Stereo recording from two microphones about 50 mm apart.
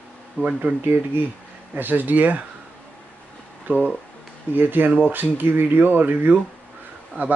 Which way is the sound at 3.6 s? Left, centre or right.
Right.